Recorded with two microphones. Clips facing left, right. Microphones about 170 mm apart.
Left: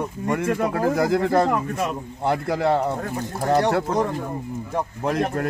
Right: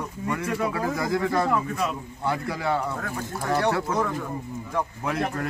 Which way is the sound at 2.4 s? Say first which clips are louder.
Left 6 dB; 40° left (ahead or behind).